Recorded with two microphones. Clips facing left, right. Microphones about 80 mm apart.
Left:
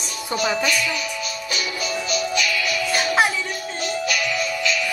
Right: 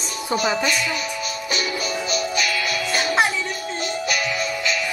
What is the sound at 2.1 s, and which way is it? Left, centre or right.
Music, right.